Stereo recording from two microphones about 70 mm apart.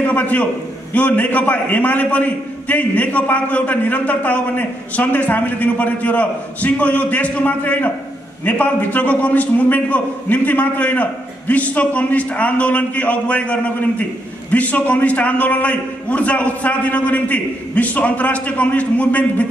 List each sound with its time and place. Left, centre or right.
0.0 s a man's voice: left